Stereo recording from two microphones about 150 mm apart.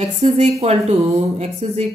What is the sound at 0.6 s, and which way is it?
Speech, 45° right (ahead or behind).